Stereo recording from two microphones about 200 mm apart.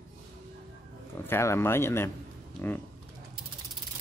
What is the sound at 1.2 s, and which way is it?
Speech, 10° left (ahead or behind).